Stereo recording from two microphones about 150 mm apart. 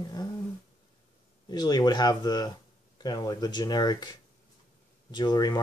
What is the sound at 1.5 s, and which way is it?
Speech, 25° left (ahead or behind).